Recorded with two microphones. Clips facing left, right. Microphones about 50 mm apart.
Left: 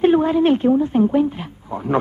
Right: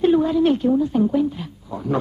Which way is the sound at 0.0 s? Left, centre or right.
Left.